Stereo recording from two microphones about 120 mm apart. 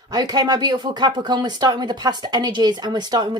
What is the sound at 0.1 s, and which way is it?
Speech, 35° right (ahead or behind).